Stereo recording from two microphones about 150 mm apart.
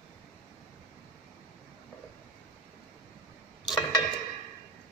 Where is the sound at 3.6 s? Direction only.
30° left (ahead or behind).